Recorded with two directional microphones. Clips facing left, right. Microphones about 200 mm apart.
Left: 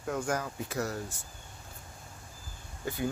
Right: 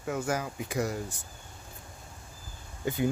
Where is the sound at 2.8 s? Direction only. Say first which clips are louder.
Right 5 dB; 20° right (ahead or behind).